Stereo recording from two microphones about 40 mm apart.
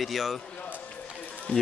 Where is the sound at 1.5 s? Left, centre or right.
Left.